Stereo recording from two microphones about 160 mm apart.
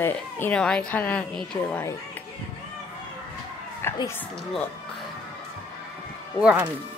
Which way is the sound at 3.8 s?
15° left (ahead or behind).